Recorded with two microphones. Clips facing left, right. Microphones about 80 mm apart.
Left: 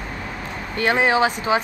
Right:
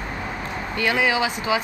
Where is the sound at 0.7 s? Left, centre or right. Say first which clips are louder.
Left 3 dB; left.